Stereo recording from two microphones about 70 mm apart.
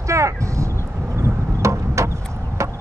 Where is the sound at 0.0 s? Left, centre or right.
Right.